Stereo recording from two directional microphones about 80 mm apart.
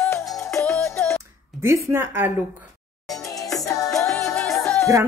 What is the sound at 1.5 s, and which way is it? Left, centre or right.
Speech, right.